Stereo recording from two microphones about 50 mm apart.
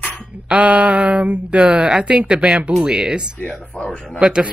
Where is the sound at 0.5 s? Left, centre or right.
Right.